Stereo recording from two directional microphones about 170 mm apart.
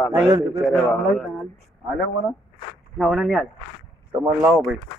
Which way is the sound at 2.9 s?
Centre (ahead or behind).